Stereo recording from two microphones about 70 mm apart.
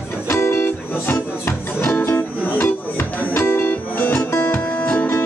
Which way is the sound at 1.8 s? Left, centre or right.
Left.